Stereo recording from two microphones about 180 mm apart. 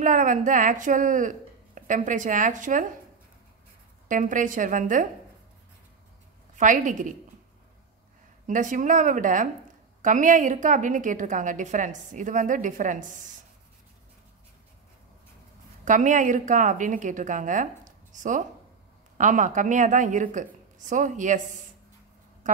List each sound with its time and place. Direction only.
0.0 s a woman's voice: 45° right (ahead or behind)
4.1 s a woman's voice: 45° right (ahead or behind)
6.5 s a woman's voice: 45° right (ahead or behind)
8.5 s a woman's voice: 45° right (ahead or behind)
15.8 s a woman's voice: 45° right (ahead or behind)